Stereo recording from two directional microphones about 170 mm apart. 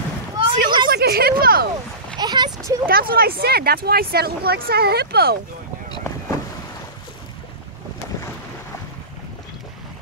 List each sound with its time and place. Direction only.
0.4 s a sound: 25° right (ahead or behind)
0.8 s speech: 65° right (ahead or behind)
2.1 s speech: 25° right (ahead or behind)
2.9 s speech: 60° right (ahead or behind)